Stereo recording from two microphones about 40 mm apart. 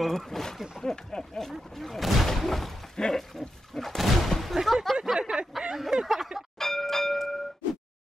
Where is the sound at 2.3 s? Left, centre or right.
Centre.